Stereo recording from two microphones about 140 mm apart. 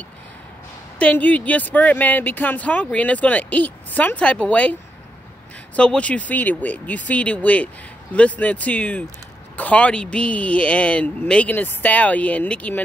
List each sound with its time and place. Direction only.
0.9 s speech: 10° left (ahead or behind)
5.8 s speech: 10° left (ahead or behind)